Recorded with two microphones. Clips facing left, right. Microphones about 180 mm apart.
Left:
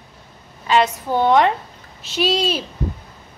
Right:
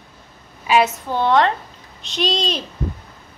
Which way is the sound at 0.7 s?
10° right (ahead or behind).